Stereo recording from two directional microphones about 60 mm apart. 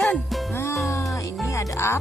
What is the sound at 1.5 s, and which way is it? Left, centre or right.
Speech, left.